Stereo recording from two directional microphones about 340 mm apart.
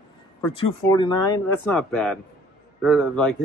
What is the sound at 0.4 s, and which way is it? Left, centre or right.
Speech, centre.